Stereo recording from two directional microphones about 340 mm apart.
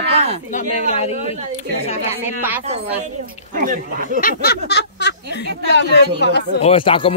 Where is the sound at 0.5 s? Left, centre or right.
Centre.